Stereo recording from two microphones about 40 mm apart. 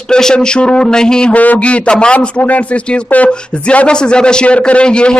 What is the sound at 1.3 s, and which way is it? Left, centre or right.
Speech, left.